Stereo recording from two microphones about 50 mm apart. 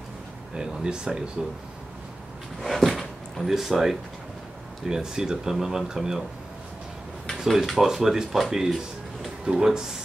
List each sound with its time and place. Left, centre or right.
0.6 s speech: centre
2.6 s speech: centre
7.4 s speech: centre